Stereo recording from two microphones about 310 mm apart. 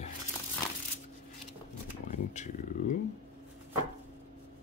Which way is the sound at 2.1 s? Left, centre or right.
Left.